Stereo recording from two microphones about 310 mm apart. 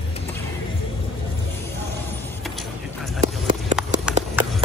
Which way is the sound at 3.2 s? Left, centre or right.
Right.